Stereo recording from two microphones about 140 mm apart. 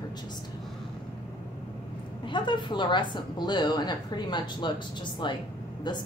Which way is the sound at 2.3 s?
35° left (ahead or behind).